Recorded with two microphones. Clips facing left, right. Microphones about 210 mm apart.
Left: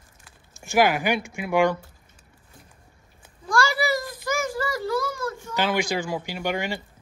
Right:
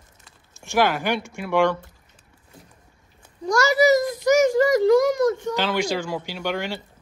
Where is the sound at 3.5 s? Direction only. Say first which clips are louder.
Right 7 dB; 40° right (ahead or behind).